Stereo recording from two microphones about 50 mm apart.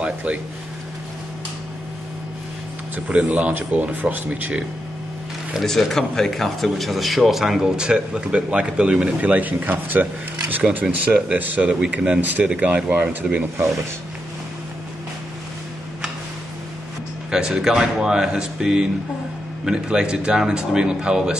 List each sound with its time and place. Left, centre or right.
0.0 s speech: right
3.1 s speech: right
5.6 s speech: centre
7.7 s speech: centre; by 11.6 s right
11.6 s speech: right
12.2 s speech: right
17.3 s speech: centre